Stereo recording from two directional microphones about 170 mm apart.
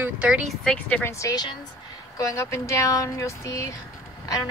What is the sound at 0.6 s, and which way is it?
A woman's voice, 10° left (ahead or behind).